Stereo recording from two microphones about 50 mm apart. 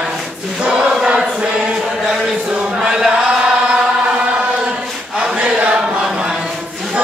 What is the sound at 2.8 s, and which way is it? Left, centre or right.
Chant, centre.